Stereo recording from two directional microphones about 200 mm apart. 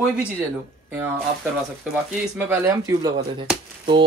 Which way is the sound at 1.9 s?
5° right (ahead or behind).